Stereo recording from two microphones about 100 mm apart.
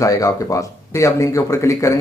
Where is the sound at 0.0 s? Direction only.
35° left (ahead or behind).